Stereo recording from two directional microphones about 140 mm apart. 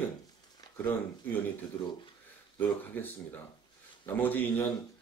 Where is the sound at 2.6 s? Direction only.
15° left (ahead or behind).